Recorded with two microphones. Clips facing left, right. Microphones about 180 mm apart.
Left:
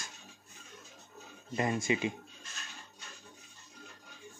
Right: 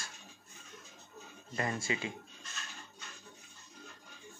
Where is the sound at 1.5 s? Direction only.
20° left (ahead or behind).